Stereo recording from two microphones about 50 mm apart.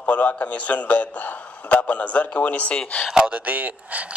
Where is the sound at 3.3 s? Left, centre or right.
Right.